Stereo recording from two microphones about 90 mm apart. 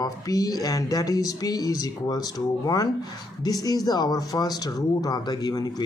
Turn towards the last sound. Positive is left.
turn(degrees=45)  # may be behind; listen again after turning